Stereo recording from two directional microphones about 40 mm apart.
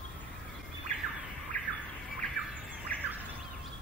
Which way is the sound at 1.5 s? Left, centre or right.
Left.